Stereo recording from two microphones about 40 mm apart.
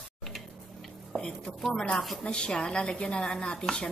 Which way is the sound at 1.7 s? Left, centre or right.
Left.